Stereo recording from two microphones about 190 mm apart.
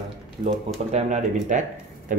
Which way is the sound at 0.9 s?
40° right (ahead or behind).